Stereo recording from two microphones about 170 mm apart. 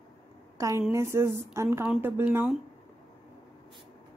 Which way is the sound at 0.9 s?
15° right (ahead or behind).